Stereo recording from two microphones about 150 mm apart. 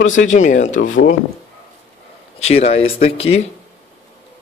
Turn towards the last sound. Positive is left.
turn(degrees=40)  # may be behind; listen again after turning